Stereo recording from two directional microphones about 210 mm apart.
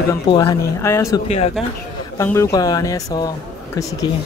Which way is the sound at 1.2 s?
30° left (ahead or behind).